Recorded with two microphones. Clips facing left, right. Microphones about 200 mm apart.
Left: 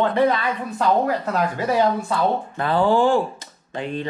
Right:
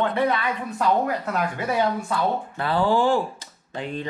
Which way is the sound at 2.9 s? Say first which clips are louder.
Left 3 dB; 50° left (ahead or behind).